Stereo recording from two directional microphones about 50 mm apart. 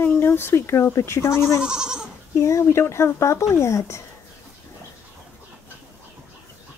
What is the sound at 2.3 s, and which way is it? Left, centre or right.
Speech, left.